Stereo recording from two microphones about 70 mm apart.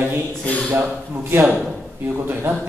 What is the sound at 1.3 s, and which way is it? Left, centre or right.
A man's voice, right.